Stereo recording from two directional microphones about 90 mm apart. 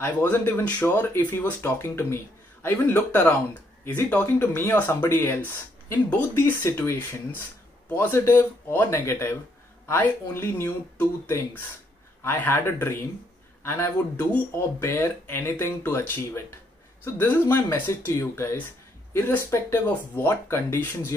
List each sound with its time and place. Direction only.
0.0 s speech: 20° left (ahead or behind)
2.6 s speech: 20° left (ahead or behind)